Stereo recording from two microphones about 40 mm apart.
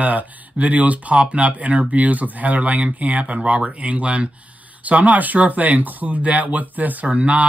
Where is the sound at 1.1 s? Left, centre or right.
Right.